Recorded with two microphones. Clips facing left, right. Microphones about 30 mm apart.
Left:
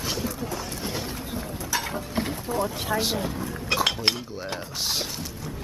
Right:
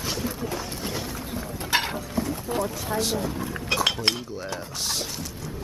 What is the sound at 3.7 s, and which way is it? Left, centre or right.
Cutlery, centre.